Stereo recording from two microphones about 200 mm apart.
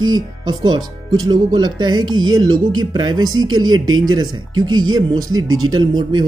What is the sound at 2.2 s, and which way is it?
Speech, 90° right.